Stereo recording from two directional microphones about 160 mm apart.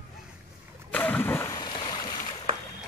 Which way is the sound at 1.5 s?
25° left (ahead or behind).